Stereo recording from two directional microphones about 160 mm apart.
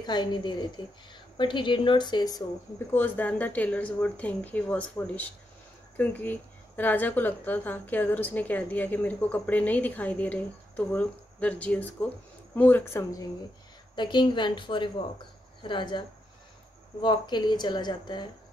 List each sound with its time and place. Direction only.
0.0 s a woman's voice: 25° left (ahead or behind)
2.9 s a woman's voice: 10° left (ahead or behind)
13.9 s a woman's voice: 30° left (ahead or behind)
17.0 s a woman's voice: 30° left (ahead or behind)